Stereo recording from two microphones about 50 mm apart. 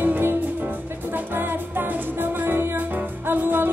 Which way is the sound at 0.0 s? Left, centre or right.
Right.